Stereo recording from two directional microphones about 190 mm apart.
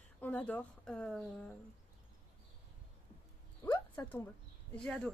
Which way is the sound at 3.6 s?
25° left (ahead or behind).